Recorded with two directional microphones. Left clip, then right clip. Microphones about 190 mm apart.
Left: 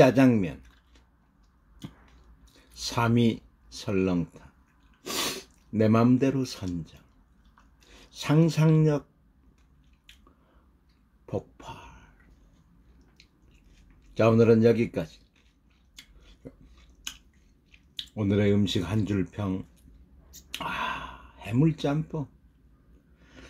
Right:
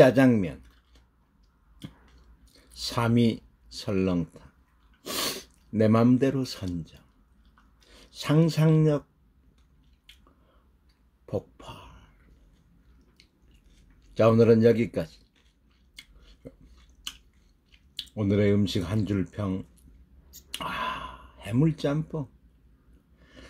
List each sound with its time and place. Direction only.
0.0 s speech: 15° right (ahead or behind)
2.5 s speech: 15° right (ahead or behind)
11.2 s a sound: 15° right (ahead or behind)
14.1 s speech: 15° right (ahead or behind)
17.6 s speech: 15° right (ahead or behind)
20.2 s a sound: 15° right (ahead or behind)